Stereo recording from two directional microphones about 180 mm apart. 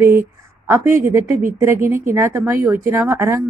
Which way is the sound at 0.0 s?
15° right (ahead or behind).